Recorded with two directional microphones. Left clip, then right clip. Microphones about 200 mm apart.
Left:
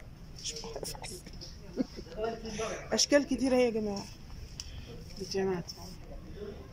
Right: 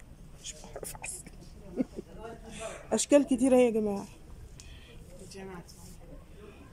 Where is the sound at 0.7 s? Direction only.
5° right (ahead or behind).